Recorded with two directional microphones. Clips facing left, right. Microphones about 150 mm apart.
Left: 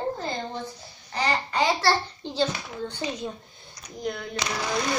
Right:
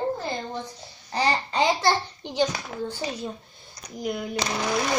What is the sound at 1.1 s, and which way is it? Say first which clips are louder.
Babbling: right 2 dB; 30° right (ahead or behind).